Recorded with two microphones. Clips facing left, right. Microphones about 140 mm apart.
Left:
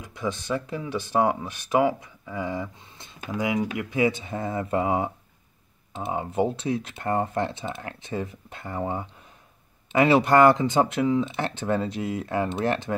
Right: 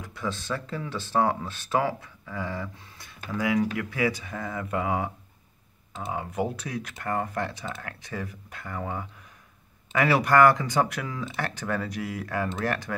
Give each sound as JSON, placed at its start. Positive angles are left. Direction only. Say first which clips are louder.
{"t": 0.0, "sound": "speech", "louder": "left 3 dB", "side_deg": 20}